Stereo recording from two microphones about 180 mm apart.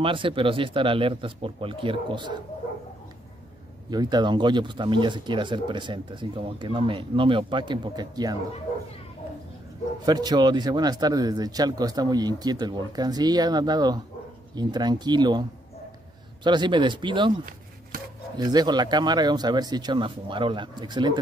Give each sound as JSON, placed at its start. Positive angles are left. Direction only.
{"t": 0.0, "sound": "speech", "side_deg": -30}
{"t": 3.9, "sound": "speech", "side_deg": -20}
{"t": 10.0, "sound": "speech", "side_deg": -20}
{"t": 16.4, "sound": "speech", "side_deg": -25}
{"t": 17.9, "sound": "chopping", "side_deg": -55}
{"t": 18.4, "sound": "speech", "side_deg": -25}